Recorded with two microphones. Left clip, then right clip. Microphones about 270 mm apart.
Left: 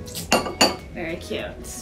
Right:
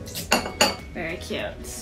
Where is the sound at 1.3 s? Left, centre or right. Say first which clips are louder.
Even; right.